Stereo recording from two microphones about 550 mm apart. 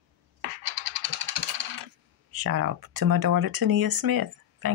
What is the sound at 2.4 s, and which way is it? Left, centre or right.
Speech, right.